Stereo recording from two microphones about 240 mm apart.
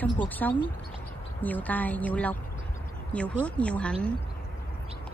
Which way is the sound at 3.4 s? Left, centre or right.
Centre.